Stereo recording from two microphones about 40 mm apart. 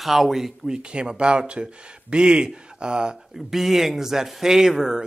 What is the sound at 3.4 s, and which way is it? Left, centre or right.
Speech, centre.